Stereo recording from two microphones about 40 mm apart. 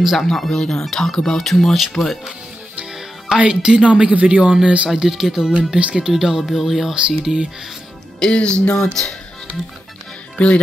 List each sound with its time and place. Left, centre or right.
0.0 s speech: centre
0.3 s speech: centre
2.9 s music: centre
3.3 s speech: right
4.8 s speech: centre
5.8 s speech: right
6.0 s speech: centre
6.9 s speech: centre
8.2 s music: left
8.7 s speech: centre
10.4 s music: left